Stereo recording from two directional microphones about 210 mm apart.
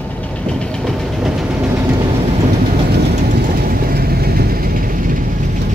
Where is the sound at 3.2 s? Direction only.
40° right (ahead or behind).